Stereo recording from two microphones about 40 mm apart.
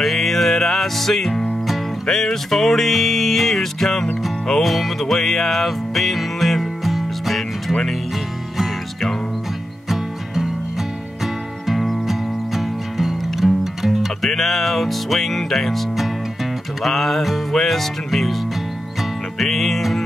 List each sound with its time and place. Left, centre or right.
0.0 s music: centre
9.8 s music: centre
11.6 s music: centre
19.3 s music: centre